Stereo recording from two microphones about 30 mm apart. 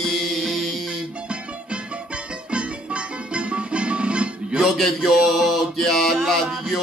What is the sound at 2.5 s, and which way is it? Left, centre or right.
Music, right.